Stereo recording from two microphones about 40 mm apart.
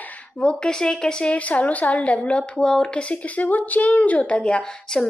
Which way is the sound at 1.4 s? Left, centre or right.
Left.